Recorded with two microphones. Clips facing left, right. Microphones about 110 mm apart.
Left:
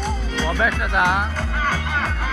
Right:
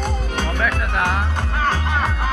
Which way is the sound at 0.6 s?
15° left (ahead or behind).